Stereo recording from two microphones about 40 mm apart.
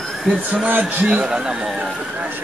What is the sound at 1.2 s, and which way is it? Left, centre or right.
Speech, centre.